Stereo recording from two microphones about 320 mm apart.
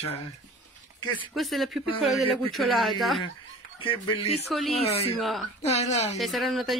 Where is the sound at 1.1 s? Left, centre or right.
Centre.